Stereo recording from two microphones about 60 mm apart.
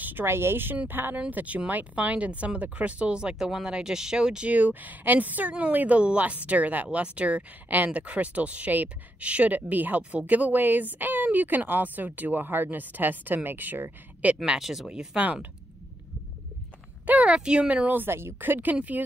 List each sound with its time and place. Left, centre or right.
0.0 s a woman's voice: right; by 4.5 s centre
4.5 s speech: right
14.2 s speech: centre
14.6 s speech: centre
17.0 s speech: right
17.3 s speech: centre
18.0 s speech: right